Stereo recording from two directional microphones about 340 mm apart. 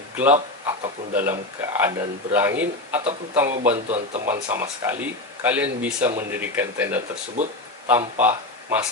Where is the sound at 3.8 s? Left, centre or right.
Centre.